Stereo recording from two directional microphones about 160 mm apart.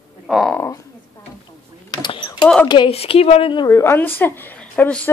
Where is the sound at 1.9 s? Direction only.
30° left (ahead or behind).